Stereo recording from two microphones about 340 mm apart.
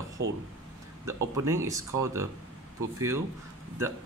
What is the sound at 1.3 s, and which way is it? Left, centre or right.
Speech, centre.